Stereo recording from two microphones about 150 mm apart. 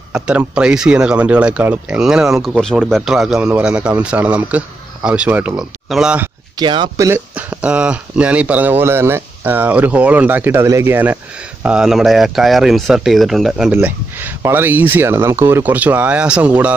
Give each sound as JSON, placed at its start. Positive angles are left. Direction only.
{"t": 0.1, "sound": "speech", "side_deg": -5}
{"t": 6.5, "sound": "speech", "side_deg": -30}
{"t": 7.1, "sound": "speech", "side_deg": -10}
{"t": 13.7, "sound": "speech", "side_deg": -15}